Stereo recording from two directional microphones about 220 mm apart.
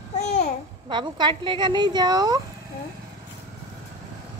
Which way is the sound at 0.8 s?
20° right (ahead or behind).